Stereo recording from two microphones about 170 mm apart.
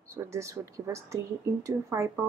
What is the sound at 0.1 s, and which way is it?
Speech, 15° right (ahead or behind).